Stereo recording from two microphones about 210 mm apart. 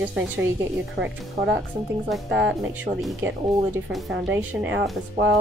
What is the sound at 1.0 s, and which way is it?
Speech, 45° right (ahead or behind).